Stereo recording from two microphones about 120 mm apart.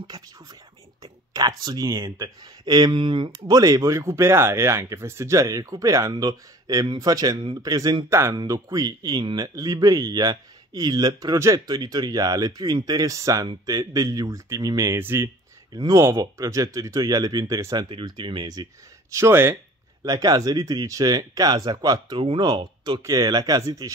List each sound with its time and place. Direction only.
0.0 s a man's voice: 35° right (ahead or behind)
3.3 s a man's voice: 30° right (ahead or behind)
17.8 s speech: 40° right (ahead or behind)
19.1 s speech: 20° right (ahead or behind)
20.0 s a man's voice: 30° right (ahead or behind)
22.2 s speech: 45° right (ahead or behind)
22.5 s speech: 35° right (ahead or behind)